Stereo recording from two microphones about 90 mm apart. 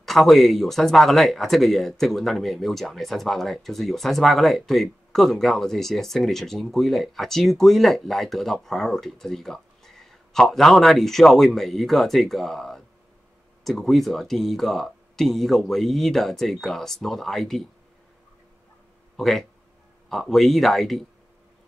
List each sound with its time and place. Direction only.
0.0 s speech: centre (ahead or behind)
19.1 s speech: centre (ahead or behind)